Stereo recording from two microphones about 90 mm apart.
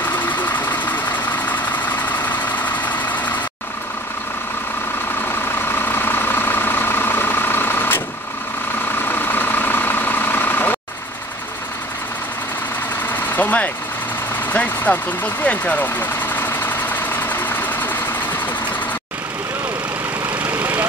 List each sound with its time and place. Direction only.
0.0 s vehicle: 20° left (ahead or behind)
5.3 s vehicle: 25° left (ahead or behind)
9.0 s vehicle: 20° left (ahead or behind)
13.1 s vehicle: 20° left (ahead or behind)
20.4 s vehicle: 20° right (ahead or behind)